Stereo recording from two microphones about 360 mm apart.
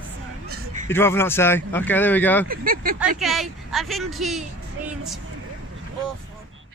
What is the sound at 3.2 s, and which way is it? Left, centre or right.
Speech, centre.